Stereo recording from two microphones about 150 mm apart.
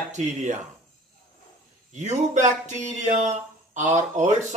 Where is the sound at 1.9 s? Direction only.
55° right (ahead or behind).